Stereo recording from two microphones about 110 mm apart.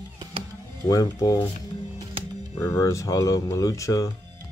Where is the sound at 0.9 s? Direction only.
30° left (ahead or behind).